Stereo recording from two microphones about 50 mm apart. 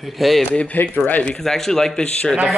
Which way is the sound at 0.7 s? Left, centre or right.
Left.